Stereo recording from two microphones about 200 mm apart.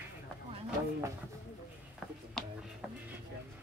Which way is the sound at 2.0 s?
Centre (ahead or behind).